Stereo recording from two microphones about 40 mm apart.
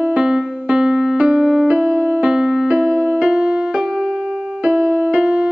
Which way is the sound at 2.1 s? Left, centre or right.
Centre.